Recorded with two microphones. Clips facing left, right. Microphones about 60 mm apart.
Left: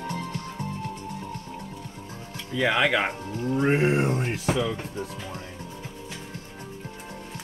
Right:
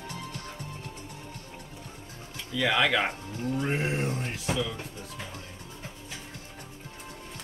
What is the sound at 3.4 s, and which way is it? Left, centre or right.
Speech, left.